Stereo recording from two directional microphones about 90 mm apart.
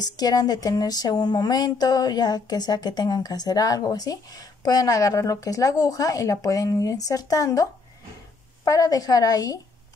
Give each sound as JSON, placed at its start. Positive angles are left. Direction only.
{"t": 0.0, "sound": "speech", "side_deg": 45}
{"t": 8.6, "sound": "speech", "side_deg": 40}